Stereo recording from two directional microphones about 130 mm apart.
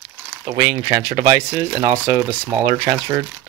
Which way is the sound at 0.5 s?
30° right (ahead or behind).